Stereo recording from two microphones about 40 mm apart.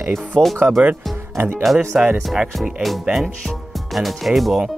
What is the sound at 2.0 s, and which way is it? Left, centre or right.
Speech, right.